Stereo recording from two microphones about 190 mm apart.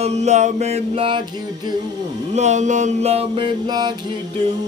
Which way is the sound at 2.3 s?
40° right (ahead or behind).